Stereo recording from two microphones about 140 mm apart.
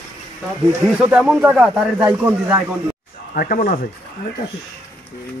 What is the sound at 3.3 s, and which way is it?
Speech, 90° left.